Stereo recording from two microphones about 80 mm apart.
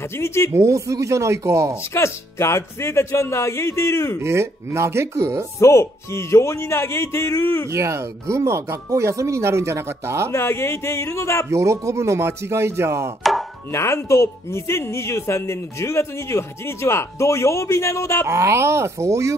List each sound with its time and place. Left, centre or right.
0.2 s speech: left
0.5 s speech: right
2.0 s speech: left
4.2 s speech: right
5.6 s speech: left
7.7 s speech: right
10.3 s speech: left
11.5 s speech: right
13.2 s chopping: centre
13.7 s speech: left
18.2 s speech: right